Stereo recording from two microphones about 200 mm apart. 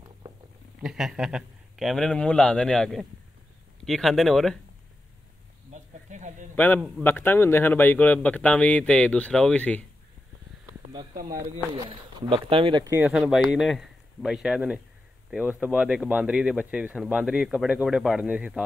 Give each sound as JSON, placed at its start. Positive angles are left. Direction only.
{"t": 0.8, "sound": "speech", "side_deg": 0}
{"t": 5.7, "sound": "a sound", "side_deg": -35}
{"t": 6.5, "sound": "a man's voice", "side_deg": 10}
{"t": 11.7, "sound": "speech", "side_deg": -25}